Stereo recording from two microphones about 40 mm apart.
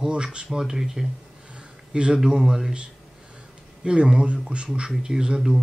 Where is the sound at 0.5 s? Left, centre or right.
Centre.